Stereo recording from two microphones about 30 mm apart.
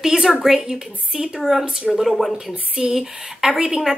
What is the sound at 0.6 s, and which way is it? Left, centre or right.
Speech, right.